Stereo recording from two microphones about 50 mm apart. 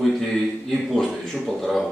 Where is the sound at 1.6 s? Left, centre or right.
Centre.